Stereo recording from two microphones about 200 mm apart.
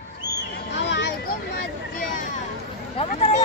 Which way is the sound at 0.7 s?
60° left (ahead or behind).